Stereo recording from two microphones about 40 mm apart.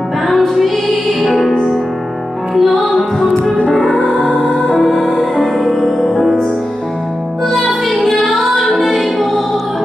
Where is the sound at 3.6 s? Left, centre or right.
Left.